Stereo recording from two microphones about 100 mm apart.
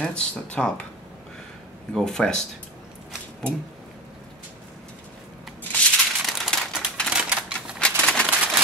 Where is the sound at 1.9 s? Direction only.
5° left (ahead or behind).